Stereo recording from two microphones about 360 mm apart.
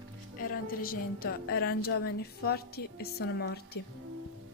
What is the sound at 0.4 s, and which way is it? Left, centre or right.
A woman's voice, left.